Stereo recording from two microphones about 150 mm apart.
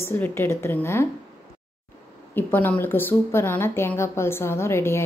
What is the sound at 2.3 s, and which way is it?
A woman's voice, 15° left (ahead or behind).